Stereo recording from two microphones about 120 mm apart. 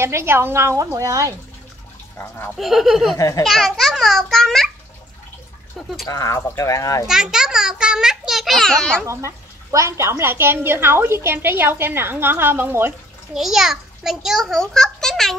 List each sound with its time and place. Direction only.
0.0 s a woman's voice: 20° right (ahead or behind)
2.1 s a sound: 20° left (ahead or behind)
2.5 s a child's voice: centre (ahead or behind)
3.2 s speech: 25° left (ahead or behind)
3.4 s a child's voice: centre (ahead or behind)
6.0 s speech: 30° left (ahead or behind)
7.1 s a child's voice: 5° right (ahead or behind)
9.0 s a woman's voice: 25° right (ahead or behind)
13.3 s a child's voice: 5° right (ahead or behind)